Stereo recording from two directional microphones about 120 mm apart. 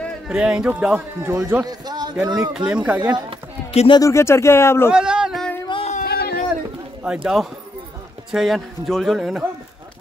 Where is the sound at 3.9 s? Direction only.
25° left (ahead or behind).